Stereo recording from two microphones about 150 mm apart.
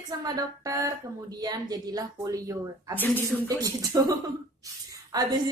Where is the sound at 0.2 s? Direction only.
20° right (ahead or behind).